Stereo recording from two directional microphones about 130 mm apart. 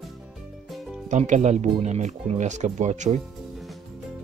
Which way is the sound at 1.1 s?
65° right (ahead or behind).